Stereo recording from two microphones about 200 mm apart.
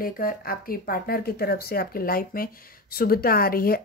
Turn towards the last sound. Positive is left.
turn(degrees=50)  # may be behind; listen again after turning